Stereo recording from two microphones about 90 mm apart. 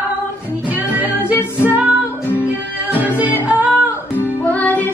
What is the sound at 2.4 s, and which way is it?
Music, 20° right (ahead or behind).